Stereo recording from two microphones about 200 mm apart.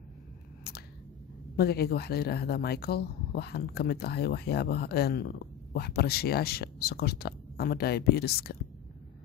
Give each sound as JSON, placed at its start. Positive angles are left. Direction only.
{"t": 1.6, "sound": "speech", "side_deg": 50}